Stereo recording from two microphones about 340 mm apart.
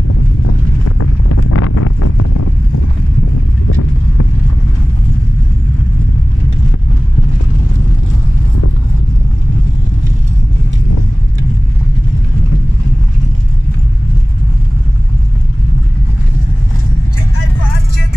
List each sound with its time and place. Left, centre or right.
0.9 s wind noise: left